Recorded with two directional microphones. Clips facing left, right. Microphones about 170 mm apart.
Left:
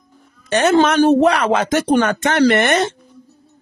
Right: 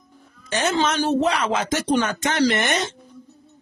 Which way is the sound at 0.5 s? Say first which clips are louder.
Left 8 dB; 65° left (ahead or behind).